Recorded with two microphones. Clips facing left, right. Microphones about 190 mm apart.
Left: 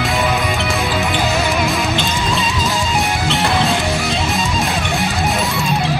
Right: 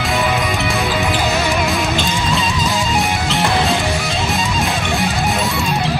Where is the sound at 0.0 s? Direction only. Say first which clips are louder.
Even; centre (ahead or behind).